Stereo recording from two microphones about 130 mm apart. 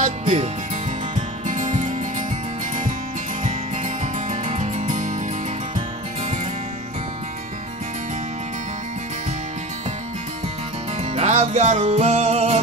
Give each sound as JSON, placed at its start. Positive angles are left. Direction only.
{"t": 0.0, "sound": "speech", "side_deg": -60}
{"t": 1.5, "sound": "music", "side_deg": -75}
{"t": 3.4, "sound": "music", "side_deg": -65}
{"t": 11.1, "sound": "music", "side_deg": -60}